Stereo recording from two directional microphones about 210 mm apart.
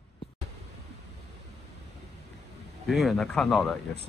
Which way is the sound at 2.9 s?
Centre (ahead or behind).